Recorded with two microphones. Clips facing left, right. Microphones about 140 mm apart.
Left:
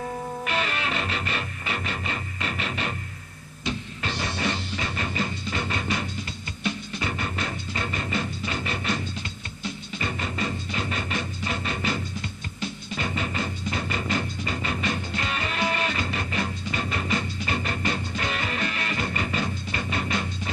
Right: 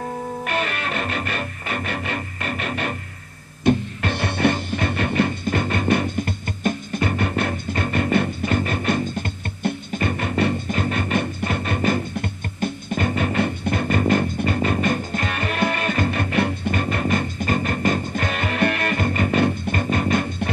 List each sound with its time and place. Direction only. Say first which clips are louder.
0.5 s music: right 2 dB; 50° right (ahead or behind)
3.6 s music: right 11 dB; 55° right (ahead or behind)